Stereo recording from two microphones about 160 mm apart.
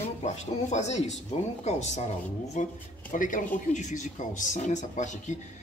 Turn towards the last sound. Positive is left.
turn(degrees=50)  # may be behind; listen again after turning